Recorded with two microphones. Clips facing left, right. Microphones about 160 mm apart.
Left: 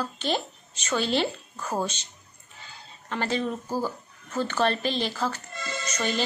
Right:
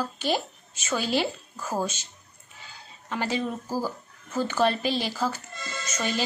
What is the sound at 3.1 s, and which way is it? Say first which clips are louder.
A woman's voice: left 1 dB; 10° right (ahead or behind).